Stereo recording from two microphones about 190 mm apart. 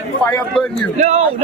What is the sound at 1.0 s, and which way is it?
Speech, 35° right (ahead or behind).